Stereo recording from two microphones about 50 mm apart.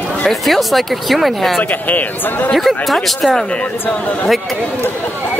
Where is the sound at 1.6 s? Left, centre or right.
Left.